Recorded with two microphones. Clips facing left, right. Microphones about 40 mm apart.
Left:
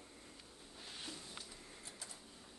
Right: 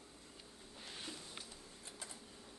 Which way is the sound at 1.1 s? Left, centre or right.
Right.